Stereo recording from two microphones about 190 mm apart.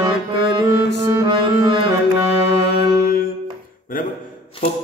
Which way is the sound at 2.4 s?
60° left (ahead or behind).